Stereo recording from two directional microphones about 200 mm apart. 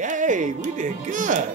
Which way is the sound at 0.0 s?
40° right (ahead or behind).